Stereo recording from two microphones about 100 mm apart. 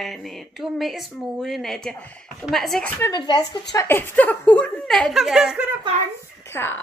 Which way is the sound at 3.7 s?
20° left (ahead or behind).